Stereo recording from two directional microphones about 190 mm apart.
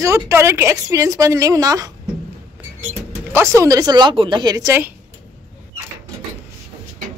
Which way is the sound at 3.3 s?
15° right (ahead or behind).